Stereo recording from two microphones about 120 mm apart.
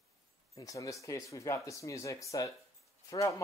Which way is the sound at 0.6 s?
30° left (ahead or behind).